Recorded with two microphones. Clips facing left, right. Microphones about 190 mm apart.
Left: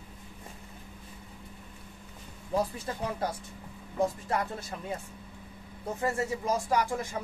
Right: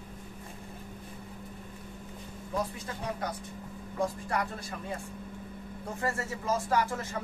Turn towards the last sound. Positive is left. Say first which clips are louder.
# left 1 dB
turn(degrees=15)  # may be behind; listen again after turning